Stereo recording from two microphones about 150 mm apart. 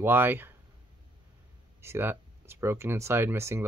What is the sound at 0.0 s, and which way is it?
Speech, 15° right (ahead or behind).